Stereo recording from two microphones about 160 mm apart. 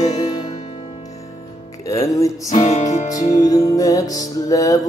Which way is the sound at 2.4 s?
50° left (ahead or behind).